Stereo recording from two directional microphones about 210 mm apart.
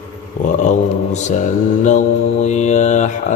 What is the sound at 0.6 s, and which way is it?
Mantra, 35° left (ahead or behind).